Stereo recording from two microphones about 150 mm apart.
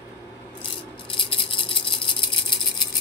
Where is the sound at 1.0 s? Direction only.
35° left (ahead or behind).